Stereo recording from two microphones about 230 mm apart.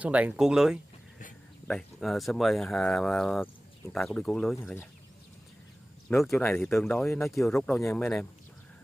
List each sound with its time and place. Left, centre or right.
0.0 s speech: centre
6.0 s speech: centre